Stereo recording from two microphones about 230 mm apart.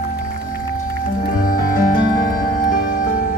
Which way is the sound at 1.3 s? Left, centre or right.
Left.